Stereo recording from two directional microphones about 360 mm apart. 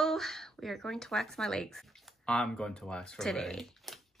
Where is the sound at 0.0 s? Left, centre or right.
Centre.